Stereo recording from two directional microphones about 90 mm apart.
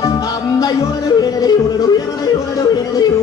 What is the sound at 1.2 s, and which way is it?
Yodeling, 45° left (ahead or behind).